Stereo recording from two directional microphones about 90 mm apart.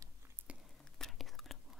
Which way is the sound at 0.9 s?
5° left (ahead or behind).